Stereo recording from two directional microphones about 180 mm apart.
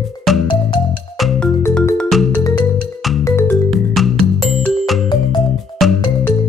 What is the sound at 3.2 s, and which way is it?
Music, 15° left (ahead or behind).